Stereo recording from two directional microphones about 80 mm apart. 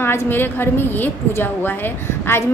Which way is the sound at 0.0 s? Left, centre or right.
Left.